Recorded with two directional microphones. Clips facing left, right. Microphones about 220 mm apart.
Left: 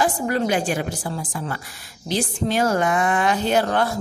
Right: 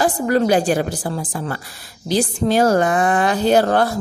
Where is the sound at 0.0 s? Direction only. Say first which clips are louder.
Right 5 dB; 40° right (ahead or behind).